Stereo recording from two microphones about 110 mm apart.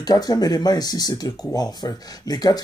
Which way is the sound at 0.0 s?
35° left (ahead or behind).